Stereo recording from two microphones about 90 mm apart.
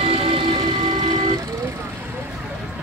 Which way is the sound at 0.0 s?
85° right.